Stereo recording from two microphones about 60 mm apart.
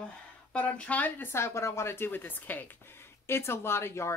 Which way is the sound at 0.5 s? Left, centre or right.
Left.